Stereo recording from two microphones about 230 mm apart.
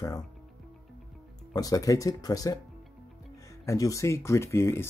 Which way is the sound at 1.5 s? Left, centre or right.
Centre.